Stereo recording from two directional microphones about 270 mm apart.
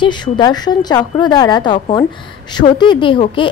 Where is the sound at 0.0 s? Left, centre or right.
Centre.